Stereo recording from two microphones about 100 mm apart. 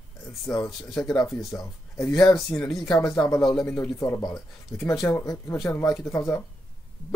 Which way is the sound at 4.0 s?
40° left (ahead or behind).